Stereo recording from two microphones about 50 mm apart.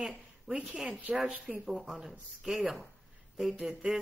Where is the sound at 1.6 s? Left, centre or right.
Centre.